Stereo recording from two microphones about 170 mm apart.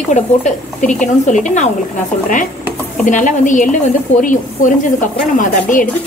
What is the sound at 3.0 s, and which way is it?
Speech, 50° left (ahead or behind).